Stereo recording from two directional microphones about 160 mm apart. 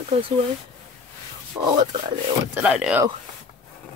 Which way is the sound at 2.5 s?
10° right (ahead or behind).